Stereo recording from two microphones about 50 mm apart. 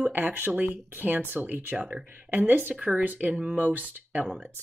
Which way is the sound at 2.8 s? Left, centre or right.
Right.